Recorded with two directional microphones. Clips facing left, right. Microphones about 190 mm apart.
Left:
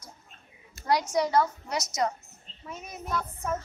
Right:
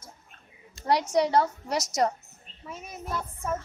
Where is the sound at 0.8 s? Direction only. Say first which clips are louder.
Right 2 dB; 30° right (ahead or behind).